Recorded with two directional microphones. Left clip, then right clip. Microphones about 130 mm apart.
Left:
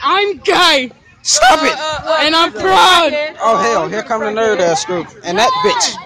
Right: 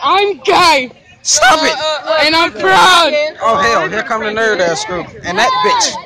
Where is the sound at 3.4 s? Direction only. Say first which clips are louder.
Even; 40° left (ahead or behind).